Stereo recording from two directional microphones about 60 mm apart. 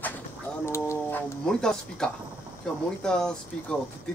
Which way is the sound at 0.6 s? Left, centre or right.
Left.